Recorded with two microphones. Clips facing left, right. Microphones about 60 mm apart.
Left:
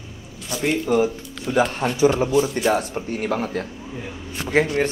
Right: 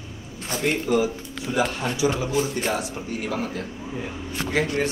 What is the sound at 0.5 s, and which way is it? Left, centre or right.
Speech, right.